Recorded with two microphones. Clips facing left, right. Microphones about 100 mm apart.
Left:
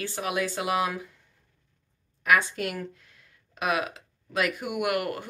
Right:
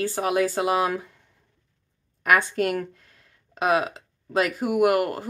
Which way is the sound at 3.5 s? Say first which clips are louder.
Right 5 dB; 30° right (ahead or behind).